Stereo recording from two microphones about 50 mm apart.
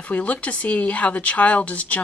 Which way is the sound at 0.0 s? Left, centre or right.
Left.